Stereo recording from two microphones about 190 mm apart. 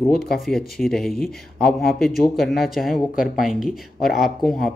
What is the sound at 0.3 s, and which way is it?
Speech, centre (ahead or behind).